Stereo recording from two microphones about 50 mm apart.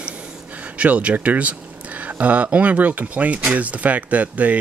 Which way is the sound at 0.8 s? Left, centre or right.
Right.